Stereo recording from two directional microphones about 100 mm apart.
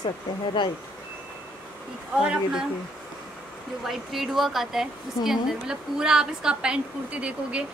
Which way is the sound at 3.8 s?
Centre (ahead or behind).